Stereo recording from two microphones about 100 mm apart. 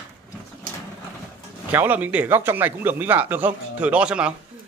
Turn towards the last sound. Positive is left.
turn(degrees=-10)  # may be behind; listen again after turning